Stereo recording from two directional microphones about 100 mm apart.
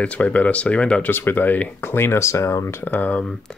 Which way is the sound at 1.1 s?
20° left (ahead or behind).